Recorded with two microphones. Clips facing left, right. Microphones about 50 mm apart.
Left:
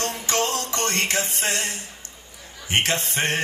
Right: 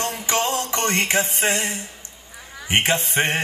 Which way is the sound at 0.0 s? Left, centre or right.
Centre.